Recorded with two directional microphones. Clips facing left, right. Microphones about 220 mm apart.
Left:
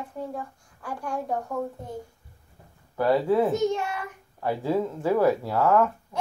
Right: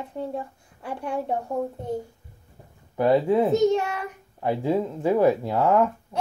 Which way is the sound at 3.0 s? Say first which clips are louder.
Right 2 dB; 20° right (ahead or behind).